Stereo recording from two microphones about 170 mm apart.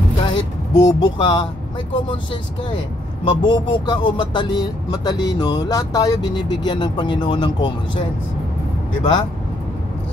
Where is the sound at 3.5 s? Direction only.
30° left (ahead or behind).